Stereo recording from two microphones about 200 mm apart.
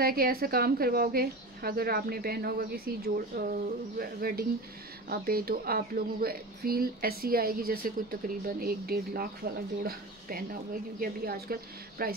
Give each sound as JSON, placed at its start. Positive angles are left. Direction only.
{"t": 0.0, "sound": "speech", "side_deg": -50}
{"t": 4.0, "sound": "speech", "side_deg": -50}